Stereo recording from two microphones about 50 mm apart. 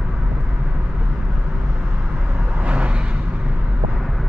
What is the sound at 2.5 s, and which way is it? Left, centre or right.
Vehicle, right.